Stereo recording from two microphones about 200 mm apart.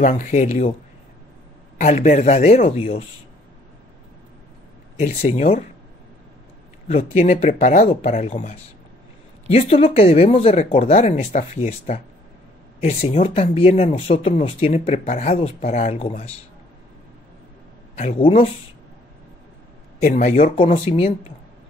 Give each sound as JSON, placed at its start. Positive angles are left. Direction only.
{"t": 0.0, "sound": "speech", "side_deg": 40}
{"t": 1.8, "sound": "speech", "side_deg": 35}
{"t": 4.9, "sound": "speech", "side_deg": 30}
{"t": 6.9, "sound": "speech", "side_deg": 30}
{"t": 17.9, "sound": "speech", "side_deg": 35}
{"t": 20.0, "sound": "speech", "side_deg": 40}